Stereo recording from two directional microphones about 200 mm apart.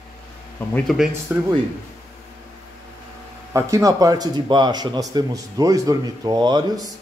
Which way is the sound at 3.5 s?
15° right (ahead or behind).